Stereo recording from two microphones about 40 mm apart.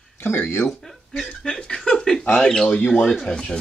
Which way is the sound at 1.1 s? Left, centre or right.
Centre.